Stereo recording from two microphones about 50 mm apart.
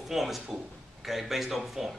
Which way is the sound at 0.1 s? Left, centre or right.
Centre.